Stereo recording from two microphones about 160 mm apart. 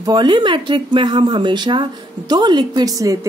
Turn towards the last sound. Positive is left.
turn(degrees=-20)  # may be behind; listen again after turning